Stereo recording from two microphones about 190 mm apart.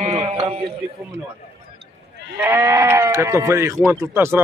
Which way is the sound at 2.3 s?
15° right (ahead or behind).